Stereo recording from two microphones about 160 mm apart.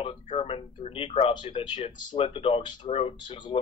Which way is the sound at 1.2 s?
30° left (ahead or behind).